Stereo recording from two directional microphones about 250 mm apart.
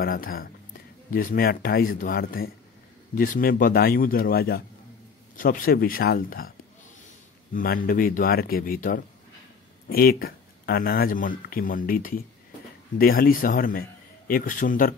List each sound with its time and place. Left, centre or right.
0.0 s speech: left
7.5 s speech: left